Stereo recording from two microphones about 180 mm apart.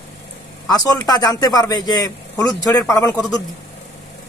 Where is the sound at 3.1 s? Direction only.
Centre (ahead or behind).